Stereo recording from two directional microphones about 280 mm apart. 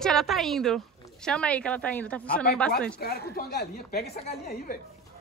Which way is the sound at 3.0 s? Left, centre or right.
Left.